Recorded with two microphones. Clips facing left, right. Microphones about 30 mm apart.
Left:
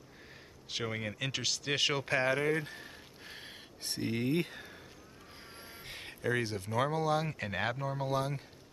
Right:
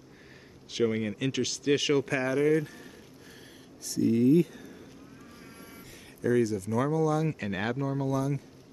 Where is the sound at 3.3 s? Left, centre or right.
Left.